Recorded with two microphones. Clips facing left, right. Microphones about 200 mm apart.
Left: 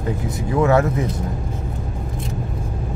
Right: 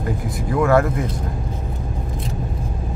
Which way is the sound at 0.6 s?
20° left (ahead or behind).